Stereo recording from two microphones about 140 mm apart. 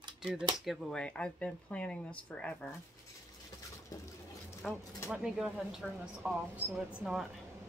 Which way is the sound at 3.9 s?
20° left (ahead or behind).